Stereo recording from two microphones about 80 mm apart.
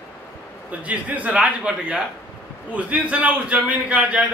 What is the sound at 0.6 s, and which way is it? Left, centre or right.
A man's voice, centre.